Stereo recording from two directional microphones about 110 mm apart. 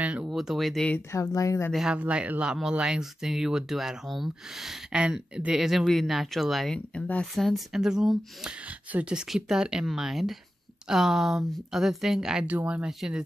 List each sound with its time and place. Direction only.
0.0 s a sound: 10° right (ahead or behind)
0.3 s speech: centre (ahead or behind)
0.9 s speech: 30° left (ahead or behind)
1.7 s speech: 5° right (ahead or behind)